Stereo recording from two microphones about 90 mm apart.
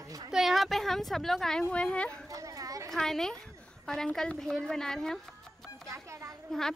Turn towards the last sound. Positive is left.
turn(degrees=-35)  # may be behind; listen again after turning